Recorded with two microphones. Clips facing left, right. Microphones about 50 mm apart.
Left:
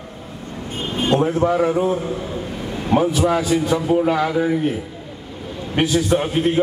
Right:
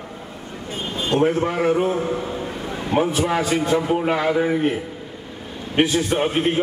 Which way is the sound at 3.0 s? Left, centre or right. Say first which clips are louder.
Left 1 dB; right.